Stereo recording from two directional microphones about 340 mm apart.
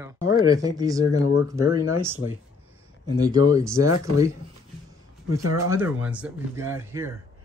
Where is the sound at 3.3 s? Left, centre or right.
Centre.